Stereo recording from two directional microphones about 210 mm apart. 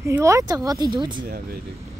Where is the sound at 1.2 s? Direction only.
50° right (ahead or behind).